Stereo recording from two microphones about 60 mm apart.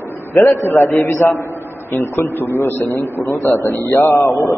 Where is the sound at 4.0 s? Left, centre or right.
Left.